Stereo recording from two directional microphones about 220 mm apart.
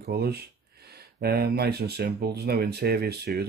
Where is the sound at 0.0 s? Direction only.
45° right (ahead or behind).